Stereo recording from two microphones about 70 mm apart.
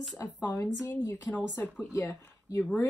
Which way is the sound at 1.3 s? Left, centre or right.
Left.